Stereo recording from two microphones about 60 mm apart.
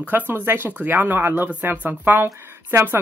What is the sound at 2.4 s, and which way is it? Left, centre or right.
Speech, right.